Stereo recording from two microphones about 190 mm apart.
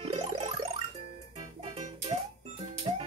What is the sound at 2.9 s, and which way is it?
Music, 30° right (ahead or behind).